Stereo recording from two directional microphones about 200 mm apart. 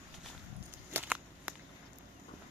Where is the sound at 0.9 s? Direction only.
5° right (ahead or behind).